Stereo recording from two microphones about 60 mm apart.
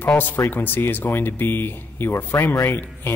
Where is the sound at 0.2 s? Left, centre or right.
Left.